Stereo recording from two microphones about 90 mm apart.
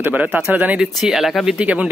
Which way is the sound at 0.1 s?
15° right (ahead or behind).